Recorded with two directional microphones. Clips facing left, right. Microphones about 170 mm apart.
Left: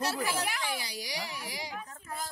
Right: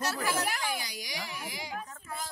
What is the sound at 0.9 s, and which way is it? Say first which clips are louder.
Speech: left 2 dB; 30° left (ahead or behind).